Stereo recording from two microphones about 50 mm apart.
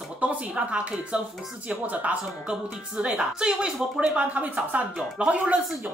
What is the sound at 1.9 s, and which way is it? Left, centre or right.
Speech, right.